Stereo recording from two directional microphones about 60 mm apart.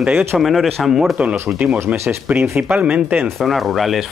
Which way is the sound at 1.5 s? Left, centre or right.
Centre.